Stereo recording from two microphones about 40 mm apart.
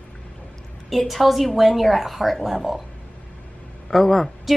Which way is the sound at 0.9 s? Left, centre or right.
Centre.